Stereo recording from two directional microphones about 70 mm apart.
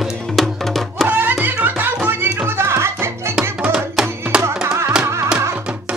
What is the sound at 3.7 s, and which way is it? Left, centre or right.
Music, centre.